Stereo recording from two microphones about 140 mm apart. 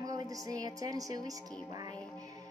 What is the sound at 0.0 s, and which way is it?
Speech, 25° right (ahead or behind).